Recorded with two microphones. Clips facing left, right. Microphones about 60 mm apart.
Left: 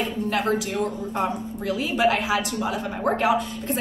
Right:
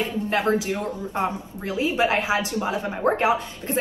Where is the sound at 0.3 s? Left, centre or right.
Right.